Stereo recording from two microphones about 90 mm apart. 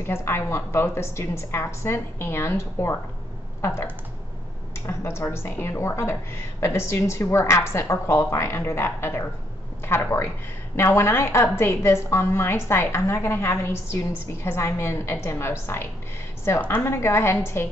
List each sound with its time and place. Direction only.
0.0 s a woman's voice: 25° left (ahead or behind)
4.7 s a woman's voice: 30° left (ahead or behind)